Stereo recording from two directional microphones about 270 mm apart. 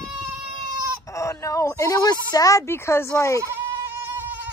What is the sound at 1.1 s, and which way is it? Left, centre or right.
A woman's voice, centre.